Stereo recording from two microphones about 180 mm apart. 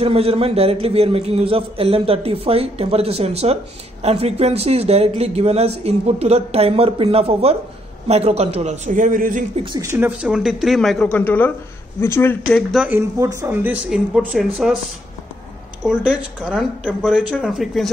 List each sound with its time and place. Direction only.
0.0 s speech: 35° right (ahead or behind)
9.8 s speech: 10° right (ahead or behind)
13.2 s speech: 15° right (ahead or behind)
15.8 s speech: 5° right (ahead or behind)